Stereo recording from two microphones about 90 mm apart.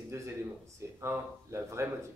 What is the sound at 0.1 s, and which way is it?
Speech, 30° right (ahead or behind).